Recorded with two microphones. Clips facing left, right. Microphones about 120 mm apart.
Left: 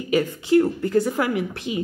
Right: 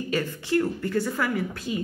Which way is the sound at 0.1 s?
15° left (ahead or behind).